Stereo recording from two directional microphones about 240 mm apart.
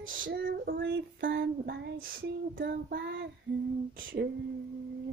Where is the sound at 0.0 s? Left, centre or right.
Right.